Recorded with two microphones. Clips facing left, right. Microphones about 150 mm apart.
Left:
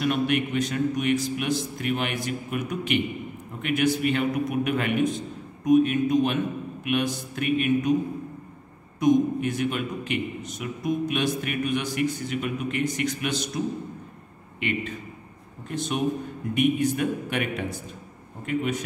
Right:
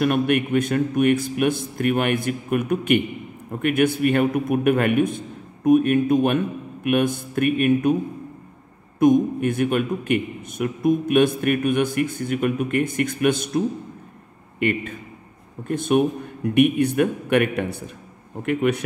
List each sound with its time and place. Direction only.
0.0 s a man's voice: 55° right (ahead or behind)
9.0 s a man's voice: 55° right (ahead or behind)
14.6 s a man's voice: 50° right (ahead or behind); by 18.8 s 65° right (ahead or behind)